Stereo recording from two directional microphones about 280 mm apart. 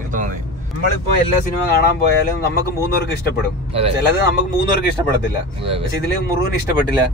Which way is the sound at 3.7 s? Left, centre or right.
Right.